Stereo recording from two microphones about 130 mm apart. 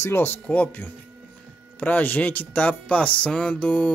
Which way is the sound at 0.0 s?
20° left (ahead or behind).